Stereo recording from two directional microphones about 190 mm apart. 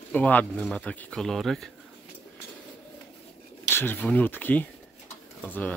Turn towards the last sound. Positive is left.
turn(degrees=10)  # may be behind; listen again after turning